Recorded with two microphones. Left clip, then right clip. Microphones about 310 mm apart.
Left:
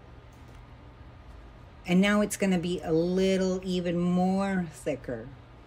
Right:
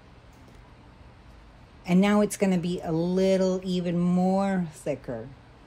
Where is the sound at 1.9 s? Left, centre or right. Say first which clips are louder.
Right 2 dB; centre.